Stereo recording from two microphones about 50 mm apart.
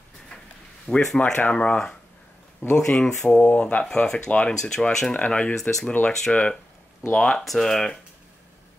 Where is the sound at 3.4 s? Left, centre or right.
Left; by 8.0 s centre.